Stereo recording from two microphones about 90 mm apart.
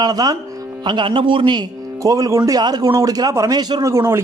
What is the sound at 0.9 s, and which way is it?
Speech, 70° right (ahead or behind).